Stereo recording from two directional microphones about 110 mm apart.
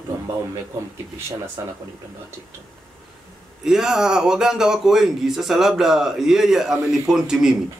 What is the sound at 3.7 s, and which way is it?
A man's voice, 5° right (ahead or behind).